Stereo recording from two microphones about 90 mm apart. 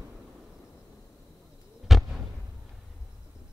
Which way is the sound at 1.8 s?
5° right (ahead or behind).